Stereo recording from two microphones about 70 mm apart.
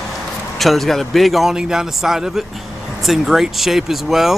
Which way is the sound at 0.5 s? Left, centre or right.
Centre.